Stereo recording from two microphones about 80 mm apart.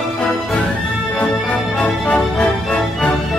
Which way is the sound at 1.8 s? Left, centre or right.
Centre.